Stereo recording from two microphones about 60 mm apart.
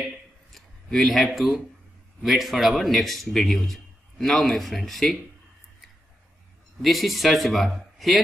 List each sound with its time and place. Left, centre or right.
0.5 s a sound: centre
1.3 s a man's voice: centre
6.8 s a man's voice: centre